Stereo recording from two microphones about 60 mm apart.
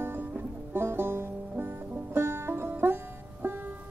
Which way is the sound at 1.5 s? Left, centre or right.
Right.